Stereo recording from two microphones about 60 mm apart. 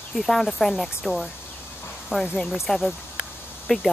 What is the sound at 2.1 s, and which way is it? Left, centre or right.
Speech, left.